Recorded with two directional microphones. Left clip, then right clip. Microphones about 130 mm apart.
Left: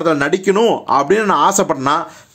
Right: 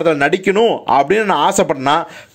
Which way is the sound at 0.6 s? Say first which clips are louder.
Right 2 dB; 5° right (ahead or behind).